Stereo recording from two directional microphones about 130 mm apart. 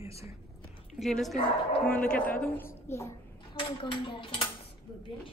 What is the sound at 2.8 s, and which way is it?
Speech, 20° left (ahead or behind).